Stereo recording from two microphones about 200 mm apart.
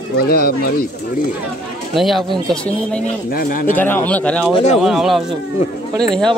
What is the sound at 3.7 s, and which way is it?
Speech, 10° left (ahead or behind).